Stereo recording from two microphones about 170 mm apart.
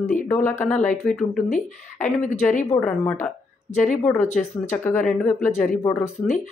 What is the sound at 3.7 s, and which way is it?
Speech, 45° left (ahead or behind).